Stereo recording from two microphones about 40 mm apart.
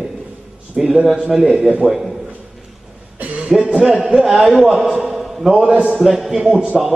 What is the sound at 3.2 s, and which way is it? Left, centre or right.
Music, right.